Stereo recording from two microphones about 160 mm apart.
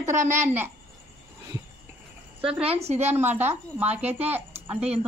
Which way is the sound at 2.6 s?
40° right (ahead or behind).